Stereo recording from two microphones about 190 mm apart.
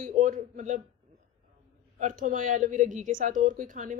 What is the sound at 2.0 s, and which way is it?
A woman's voice, 40° right (ahead or behind).